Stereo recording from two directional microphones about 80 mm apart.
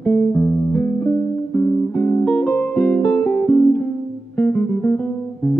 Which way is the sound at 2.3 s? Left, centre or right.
Left.